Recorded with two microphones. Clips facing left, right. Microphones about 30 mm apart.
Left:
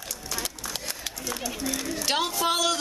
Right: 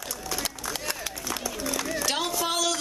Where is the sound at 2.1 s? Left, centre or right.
Centre.